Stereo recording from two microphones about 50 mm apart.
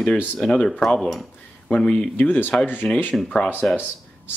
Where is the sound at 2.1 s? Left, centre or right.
Left.